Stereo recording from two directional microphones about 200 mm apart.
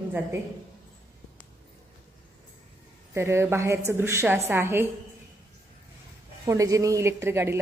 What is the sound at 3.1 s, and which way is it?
A woman's voice, 15° right (ahead or behind).